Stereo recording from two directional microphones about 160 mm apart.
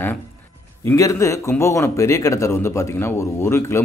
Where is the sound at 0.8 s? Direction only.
20° left (ahead or behind).